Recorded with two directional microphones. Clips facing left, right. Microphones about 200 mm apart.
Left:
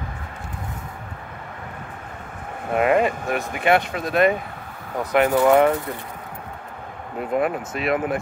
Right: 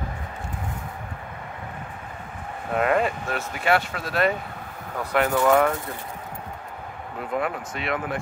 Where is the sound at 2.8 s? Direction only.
10° left (ahead or behind).